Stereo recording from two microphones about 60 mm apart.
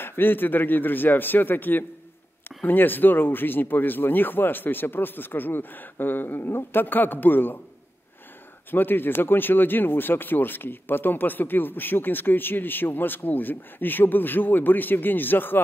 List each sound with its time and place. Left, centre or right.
0.0 s speech: left
8.7 s speech: left